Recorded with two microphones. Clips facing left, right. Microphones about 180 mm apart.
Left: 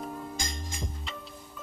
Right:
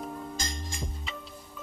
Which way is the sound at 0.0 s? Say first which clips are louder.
Even; centre (ahead or behind).